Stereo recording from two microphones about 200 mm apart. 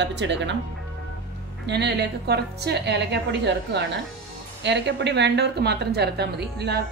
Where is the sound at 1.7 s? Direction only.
55° right (ahead or behind).